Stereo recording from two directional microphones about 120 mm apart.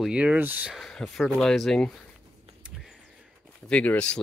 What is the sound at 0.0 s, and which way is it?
Speech, 5° right (ahead or behind).